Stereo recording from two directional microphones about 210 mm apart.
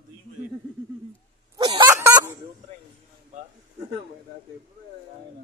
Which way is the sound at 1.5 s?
20° right (ahead or behind).